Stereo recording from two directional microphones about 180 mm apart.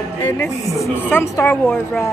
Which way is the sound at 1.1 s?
10° left (ahead or behind).